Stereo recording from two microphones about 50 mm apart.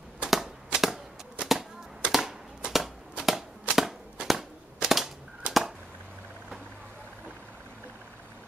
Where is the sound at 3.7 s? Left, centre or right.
Centre.